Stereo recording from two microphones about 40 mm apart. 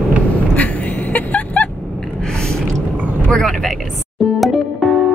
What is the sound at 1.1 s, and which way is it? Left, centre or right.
Music, left.